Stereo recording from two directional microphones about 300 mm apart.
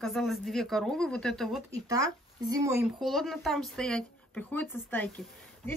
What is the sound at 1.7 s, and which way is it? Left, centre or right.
Speech, centre.